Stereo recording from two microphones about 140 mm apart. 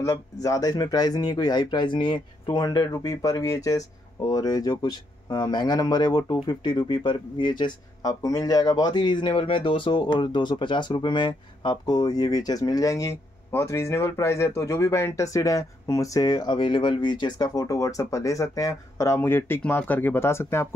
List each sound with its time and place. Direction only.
0.0 s speech: 25° left (ahead or behind)